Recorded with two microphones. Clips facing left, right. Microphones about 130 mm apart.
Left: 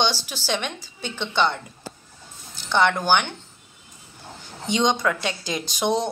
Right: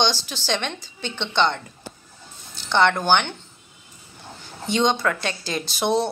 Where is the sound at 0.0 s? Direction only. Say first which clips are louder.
Right 1 dB; 10° left (ahead or behind).